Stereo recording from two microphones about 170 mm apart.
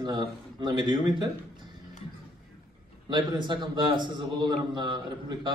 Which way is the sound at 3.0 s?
25° right (ahead or behind).